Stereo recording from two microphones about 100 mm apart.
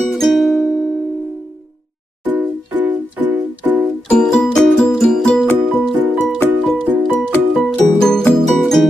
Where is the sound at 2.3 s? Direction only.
15° right (ahead or behind).